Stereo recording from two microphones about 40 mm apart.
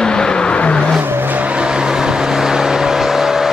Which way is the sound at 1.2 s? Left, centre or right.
Right.